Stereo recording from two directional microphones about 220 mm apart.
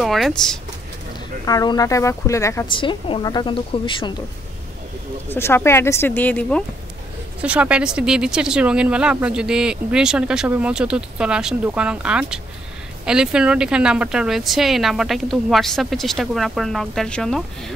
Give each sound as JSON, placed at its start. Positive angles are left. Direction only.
{"t": 0.0, "sound": "speech", "side_deg": 0}
{"t": 1.4, "sound": "speech", "side_deg": 15}
{"t": 5.3, "sound": "speech", "side_deg": 10}
{"t": 7.4, "sound": "speech", "side_deg": -5}